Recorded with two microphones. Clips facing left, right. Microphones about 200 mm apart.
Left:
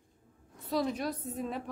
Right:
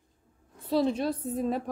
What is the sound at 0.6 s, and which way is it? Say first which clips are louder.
A woman's voice: right 6 dB; 30° right (ahead or behind).